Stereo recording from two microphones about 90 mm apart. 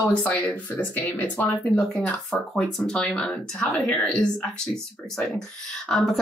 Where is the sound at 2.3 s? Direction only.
5° left (ahead or behind).